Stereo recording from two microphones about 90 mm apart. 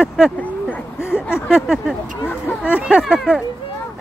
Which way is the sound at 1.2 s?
25° left (ahead or behind).